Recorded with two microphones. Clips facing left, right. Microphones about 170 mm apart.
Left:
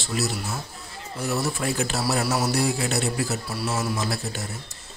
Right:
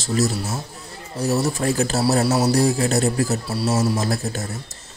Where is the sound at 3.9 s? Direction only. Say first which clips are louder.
Right 5 dB; 40° right (ahead or behind).